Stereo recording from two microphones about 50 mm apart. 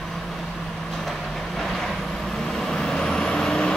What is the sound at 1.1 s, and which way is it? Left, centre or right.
Vehicle, centre.